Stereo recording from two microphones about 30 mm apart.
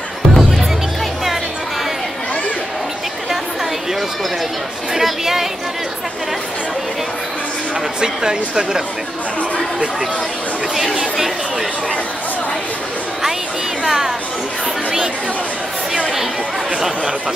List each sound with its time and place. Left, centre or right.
0.4 s music: centre
4.9 s speech: centre
8.0 s speech: right
13.8 s speech: centre